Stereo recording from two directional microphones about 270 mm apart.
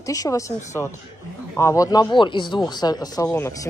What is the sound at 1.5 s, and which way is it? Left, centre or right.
Speech, centre.